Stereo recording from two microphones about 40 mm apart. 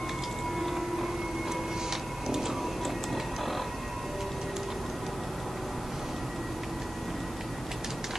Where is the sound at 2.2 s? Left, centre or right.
Centre.